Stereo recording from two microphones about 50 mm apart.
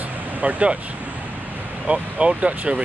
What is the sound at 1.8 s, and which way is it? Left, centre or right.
Speech, right.